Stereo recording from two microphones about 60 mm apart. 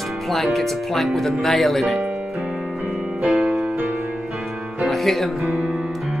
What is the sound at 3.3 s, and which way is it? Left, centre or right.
Music, centre.